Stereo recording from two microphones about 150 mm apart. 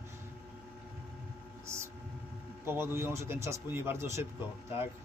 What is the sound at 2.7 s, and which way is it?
Speech, 15° right (ahead or behind).